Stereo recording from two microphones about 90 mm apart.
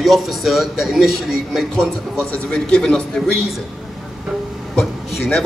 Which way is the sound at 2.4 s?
10° left (ahead or behind).